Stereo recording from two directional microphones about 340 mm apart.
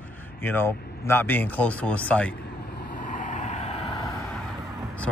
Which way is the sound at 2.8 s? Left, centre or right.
Left.